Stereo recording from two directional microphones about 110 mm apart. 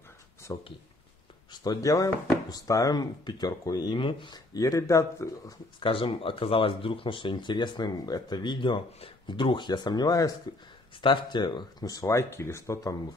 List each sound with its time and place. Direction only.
0.5 s speech: 25° left (ahead or behind)
4.0 s speech: 50° left (ahead or behind)
4.6 s speech: 30° left (ahead or behind)
5.8 s speech: 55° left (ahead or behind); by 10.3 s 35° left (ahead or behind)
11.0 s speech: 45° left (ahead or behind); by 12.9 s 30° left (ahead or behind)